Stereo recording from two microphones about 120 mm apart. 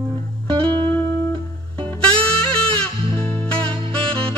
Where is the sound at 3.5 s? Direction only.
10° left (ahead or behind).